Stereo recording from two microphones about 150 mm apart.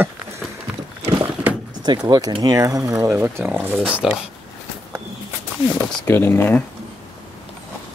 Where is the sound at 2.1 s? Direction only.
25° right (ahead or behind); by 4.2 s 5° right (ahead or behind).